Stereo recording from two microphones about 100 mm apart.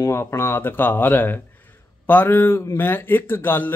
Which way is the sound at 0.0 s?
30° left (ahead or behind).